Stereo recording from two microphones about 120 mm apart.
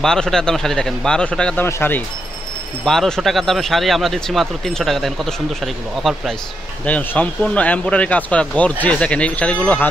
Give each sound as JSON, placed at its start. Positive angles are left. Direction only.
{"t": 0.0, "sound": "speech", "side_deg": 5}
{"t": 2.8, "sound": "speech", "side_deg": 5}